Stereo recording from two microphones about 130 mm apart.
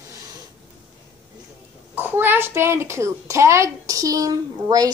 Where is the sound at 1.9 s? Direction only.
15° right (ahead or behind).